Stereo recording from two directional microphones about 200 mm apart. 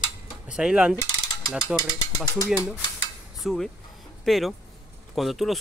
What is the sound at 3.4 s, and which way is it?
Speech, centre (ahead or behind).